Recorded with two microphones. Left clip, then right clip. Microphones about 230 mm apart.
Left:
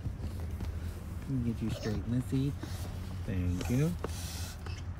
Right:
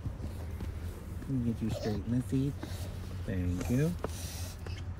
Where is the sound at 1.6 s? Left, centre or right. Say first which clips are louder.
Right 2 dB; centre.